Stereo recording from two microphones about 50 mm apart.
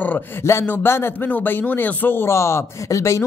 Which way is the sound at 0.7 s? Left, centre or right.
Left.